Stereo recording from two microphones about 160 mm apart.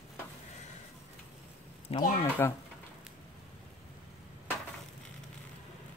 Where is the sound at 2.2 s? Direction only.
20° left (ahead or behind).